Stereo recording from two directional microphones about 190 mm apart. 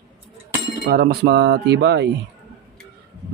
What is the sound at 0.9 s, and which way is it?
Speech, 55° right (ahead or behind).